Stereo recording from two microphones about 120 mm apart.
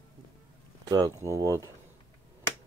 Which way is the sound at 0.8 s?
30° right (ahead or behind).